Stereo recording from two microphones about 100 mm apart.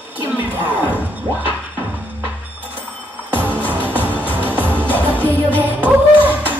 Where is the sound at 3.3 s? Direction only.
20° right (ahead or behind).